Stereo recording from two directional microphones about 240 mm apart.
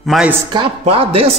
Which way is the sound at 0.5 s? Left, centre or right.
Right.